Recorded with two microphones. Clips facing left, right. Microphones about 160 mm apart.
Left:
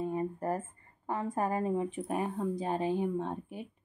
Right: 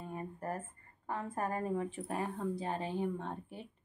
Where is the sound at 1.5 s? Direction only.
20° left (ahead or behind).